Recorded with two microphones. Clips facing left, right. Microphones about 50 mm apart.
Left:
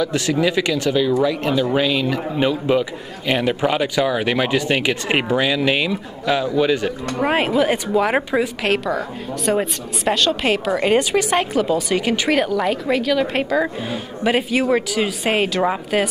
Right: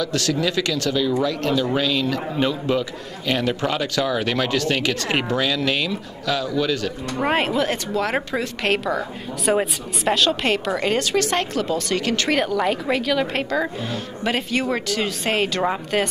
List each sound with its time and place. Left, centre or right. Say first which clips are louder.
0.0 s a man's voice: left 3 dB; centre
7.2 s a man's voice: left 3 dB; centre
8.6 s a woman's voice: left 2 dB; centre
12.4 s a woman's voice: left 2 dB; centre